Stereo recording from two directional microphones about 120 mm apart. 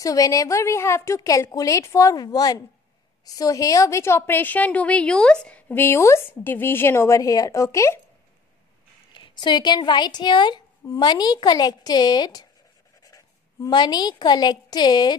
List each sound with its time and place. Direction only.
0.0 s a woman's voice: 30° left (ahead or behind)
9.1 s a woman's voice: 40° left (ahead or behind)